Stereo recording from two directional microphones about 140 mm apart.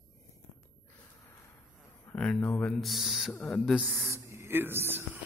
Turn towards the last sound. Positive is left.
turn(degrees=-15)  # may be behind; listen again after turning